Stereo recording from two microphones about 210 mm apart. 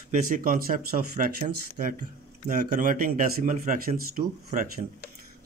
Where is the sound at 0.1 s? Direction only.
40° right (ahead or behind).